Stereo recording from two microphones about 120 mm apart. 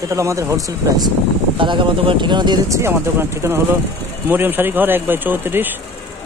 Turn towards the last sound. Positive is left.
turn(degrees=-15)  # may be behind; listen again after turning